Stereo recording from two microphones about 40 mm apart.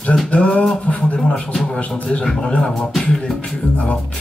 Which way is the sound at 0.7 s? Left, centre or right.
Left.